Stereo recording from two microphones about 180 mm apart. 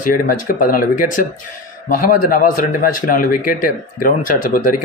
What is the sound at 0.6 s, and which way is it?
Speech, 50° left (ahead or behind).